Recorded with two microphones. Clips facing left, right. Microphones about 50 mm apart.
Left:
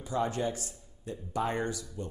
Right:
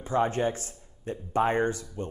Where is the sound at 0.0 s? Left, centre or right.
Right.